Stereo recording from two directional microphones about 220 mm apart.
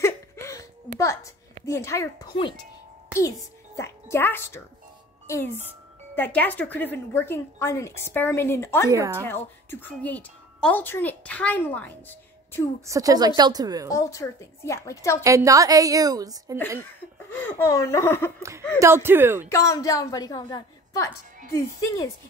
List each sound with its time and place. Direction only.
0.0 s a sound: 15° left (ahead or behind)
1.7 s speech: 15° left (ahead or behind)
3.7 s a child's voice: 10° left (ahead or behind)
8.8 s a woman's voice: 15° right (ahead or behind)
9.2 s speech: 10° left (ahead or behind)
12.8 s a woman's voice: 15° right (ahead or behind)
13.8 s speech: 15° left (ahead or behind)
15.2 s a woman's voice: 15° right (ahead or behind)
17.3 s speech: 10° left (ahead or behind)
18.8 s a woman's voice: 10° right (ahead or behind)
19.5 s speech: 15° left (ahead or behind)